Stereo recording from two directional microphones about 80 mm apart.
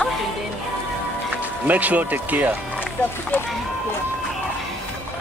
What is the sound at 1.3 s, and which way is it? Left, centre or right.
Speech, centre.